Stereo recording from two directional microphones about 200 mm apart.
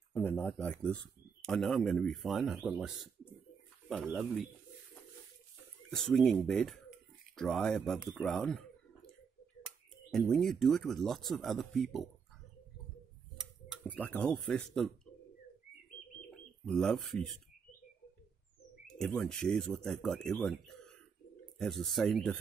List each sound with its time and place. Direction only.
0.1 s speech: 10° left (ahead or behind)
3.9 s speech: 5° right (ahead or behind)
5.9 s speech: 5° left (ahead or behind)
10.1 s speech: centre (ahead or behind)
13.8 s speech: 10° left (ahead or behind)
16.6 s speech: 5° left (ahead or behind)
18.9 s speech: 5° left (ahead or behind)